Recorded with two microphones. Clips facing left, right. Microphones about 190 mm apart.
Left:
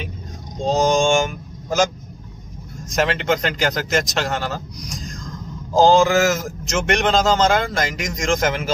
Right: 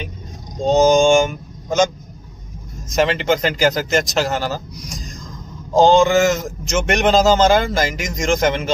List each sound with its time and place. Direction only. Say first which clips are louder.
0.7 s mantra: right 5 dB; centre (ahead or behind)
2.9 s a man's voice: right 3 dB; centre (ahead or behind)